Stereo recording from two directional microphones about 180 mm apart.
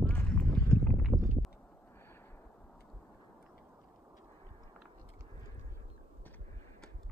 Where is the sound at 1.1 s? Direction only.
20° right (ahead or behind).